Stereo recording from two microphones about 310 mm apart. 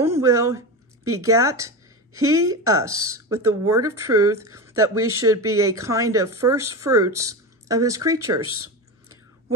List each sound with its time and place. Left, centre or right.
0.0 s a woman's voice: centre
4.9 s speech: right
5.5 s speech: centre